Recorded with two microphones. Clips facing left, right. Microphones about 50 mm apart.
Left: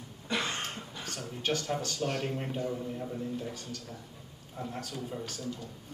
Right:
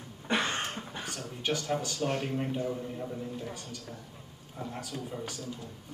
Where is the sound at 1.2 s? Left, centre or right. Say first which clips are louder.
Left 1 dB; centre.